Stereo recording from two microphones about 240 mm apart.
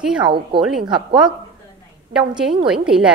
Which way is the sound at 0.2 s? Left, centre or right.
Right.